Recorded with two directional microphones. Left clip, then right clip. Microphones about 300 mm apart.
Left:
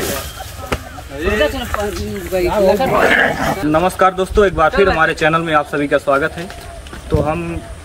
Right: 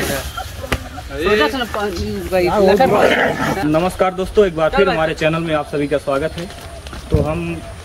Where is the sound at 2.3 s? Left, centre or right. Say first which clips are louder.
Even; right.